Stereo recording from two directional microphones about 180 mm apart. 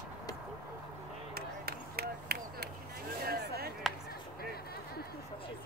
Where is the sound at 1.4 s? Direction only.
60° right (ahead or behind).